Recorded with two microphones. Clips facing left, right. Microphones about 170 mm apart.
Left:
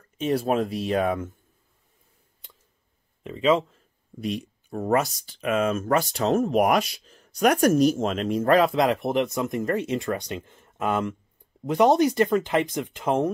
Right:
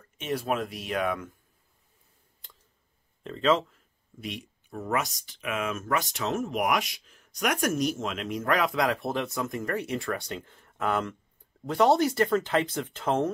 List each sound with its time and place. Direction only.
0.2 s speech: 30° left (ahead or behind)
3.3 s speech: 10° left (ahead or behind)
4.2 s speech: 35° left (ahead or behind); by 13.3 s 15° left (ahead or behind)